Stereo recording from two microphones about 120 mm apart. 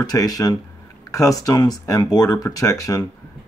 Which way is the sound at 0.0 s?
30° left (ahead or behind).